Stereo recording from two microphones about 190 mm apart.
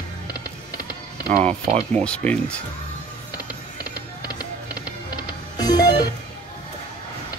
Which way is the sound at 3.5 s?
20° left (ahead or behind).